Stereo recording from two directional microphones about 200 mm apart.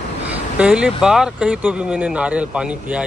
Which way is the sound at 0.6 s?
5° right (ahead or behind).